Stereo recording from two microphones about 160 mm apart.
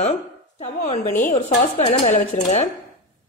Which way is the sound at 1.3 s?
35° left (ahead or behind).